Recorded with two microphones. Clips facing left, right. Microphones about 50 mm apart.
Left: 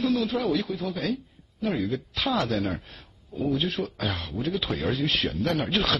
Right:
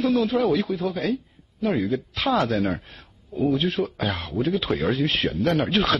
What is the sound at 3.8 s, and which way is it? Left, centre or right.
Speech, centre.